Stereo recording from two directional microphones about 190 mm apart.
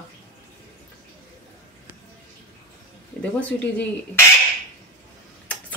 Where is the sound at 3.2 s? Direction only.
5° left (ahead or behind).